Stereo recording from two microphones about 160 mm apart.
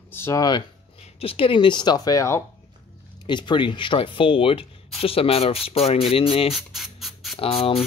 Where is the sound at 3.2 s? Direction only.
30° left (ahead or behind).